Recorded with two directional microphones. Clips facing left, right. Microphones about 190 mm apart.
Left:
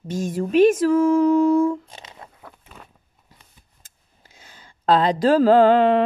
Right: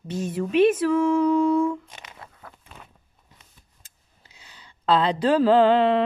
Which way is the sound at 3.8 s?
50° left (ahead or behind).